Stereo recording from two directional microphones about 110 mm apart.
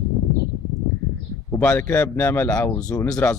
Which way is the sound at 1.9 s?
20° left (ahead or behind).